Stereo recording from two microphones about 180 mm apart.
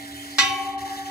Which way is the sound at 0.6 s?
60° left (ahead or behind).